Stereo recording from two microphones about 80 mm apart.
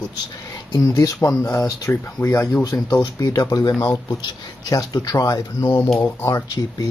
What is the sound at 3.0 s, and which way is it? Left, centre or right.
Speech, left.